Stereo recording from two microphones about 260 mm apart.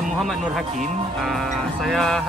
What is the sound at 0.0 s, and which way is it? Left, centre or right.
Speech, centre.